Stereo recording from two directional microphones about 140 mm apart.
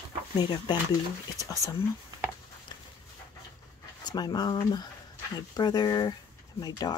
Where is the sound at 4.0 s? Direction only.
30° left (ahead or behind).